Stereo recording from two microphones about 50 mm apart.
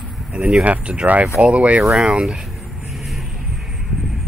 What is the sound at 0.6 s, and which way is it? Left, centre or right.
Speech, right.